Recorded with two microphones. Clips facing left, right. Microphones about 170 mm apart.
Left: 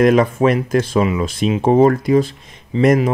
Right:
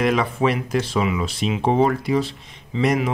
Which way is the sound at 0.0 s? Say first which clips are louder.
Left 7 dB; 45° left (ahead or behind).